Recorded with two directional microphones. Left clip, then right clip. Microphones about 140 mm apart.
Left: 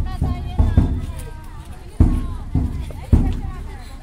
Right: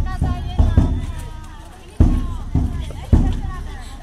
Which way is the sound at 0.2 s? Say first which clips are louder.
Right 1 dB; 10° left (ahead or behind).